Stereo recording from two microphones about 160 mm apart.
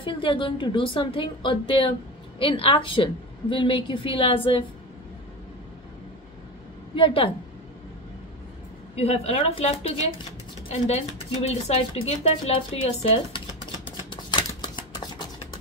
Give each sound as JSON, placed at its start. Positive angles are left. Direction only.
{"t": 0.0, "sound": "a woman's voice", "side_deg": 30}
{"t": 8.9, "sound": "a woman's voice", "side_deg": 40}
{"t": 14.1, "sound": "a sound", "side_deg": 30}